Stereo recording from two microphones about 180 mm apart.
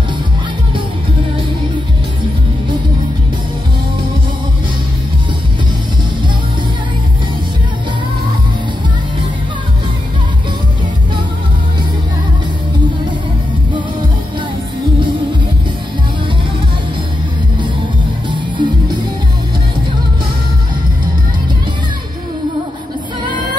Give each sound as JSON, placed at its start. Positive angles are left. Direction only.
{"t": 18.3, "sound": "music", "side_deg": -25}